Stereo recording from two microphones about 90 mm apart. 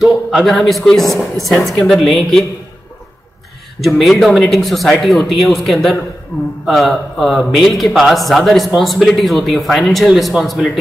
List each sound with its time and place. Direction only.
0.0 s a man's voice: 5° right (ahead or behind)
3.8 s a man's voice: centre (ahead or behind)